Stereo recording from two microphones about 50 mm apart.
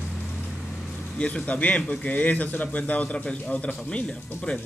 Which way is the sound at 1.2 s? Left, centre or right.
Left.